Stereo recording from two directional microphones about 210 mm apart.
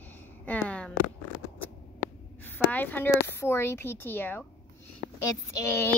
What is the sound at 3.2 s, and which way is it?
Speech, 10° left (ahead or behind).